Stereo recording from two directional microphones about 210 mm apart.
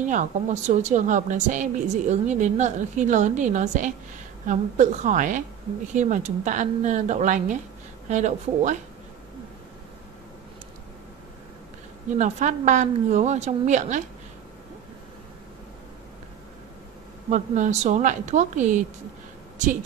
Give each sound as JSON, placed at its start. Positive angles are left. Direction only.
{"t": 0.0, "sound": "a woman's voice", "side_deg": -35}
{"t": 12.2, "sound": "a woman's voice", "side_deg": -35}
{"t": 17.3, "sound": "a woman's voice", "side_deg": -35}